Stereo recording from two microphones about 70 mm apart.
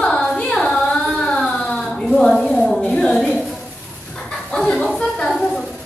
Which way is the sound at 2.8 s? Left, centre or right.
Centre.